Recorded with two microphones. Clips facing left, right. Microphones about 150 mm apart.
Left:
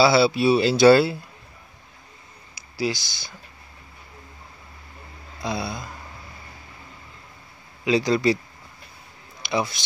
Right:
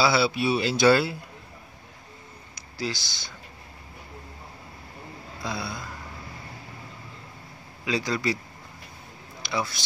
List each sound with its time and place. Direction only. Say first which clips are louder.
0.0 s speech: left 5 dB; 30° left (ahead or behind)
2.5 s speech: left 6 dB; 10° left (ahead or behind)
5.4 s speech: left 5 dB; 20° left (ahead or behind)
7.8 s speech: left 7 dB; 20° left (ahead or behind)
9.5 s speech: left 5 dB; 20° left (ahead or behind)